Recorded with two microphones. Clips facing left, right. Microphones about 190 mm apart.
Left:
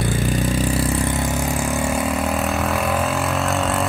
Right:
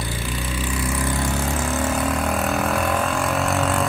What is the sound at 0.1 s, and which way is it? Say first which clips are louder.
Vehicle: left 8 dB; 45° left (ahead or behind).